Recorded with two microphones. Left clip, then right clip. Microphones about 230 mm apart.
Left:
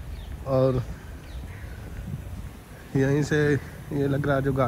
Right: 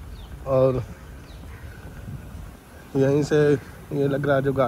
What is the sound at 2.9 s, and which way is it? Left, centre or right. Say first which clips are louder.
Speech: right 4 dB; centre.